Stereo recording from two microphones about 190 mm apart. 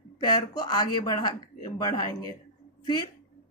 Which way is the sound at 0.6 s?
20° left (ahead or behind).